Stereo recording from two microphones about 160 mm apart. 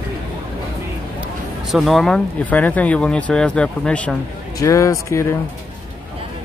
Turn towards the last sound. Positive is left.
turn(degrees=20)  # may be behind; listen again after turning